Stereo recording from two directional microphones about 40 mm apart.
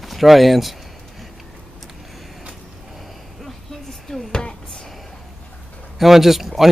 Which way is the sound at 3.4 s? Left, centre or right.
Centre.